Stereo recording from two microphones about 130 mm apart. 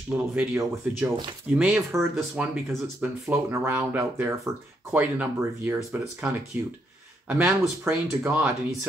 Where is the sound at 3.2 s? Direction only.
20° right (ahead or behind).